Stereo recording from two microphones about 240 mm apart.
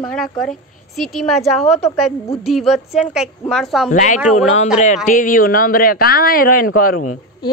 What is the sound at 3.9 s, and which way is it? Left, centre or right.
Speech, left.